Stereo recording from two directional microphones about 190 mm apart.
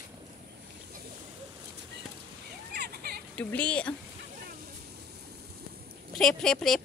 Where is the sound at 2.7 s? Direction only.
55° right (ahead or behind).